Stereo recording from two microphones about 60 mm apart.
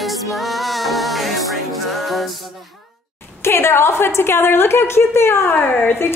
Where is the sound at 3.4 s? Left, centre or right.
Left.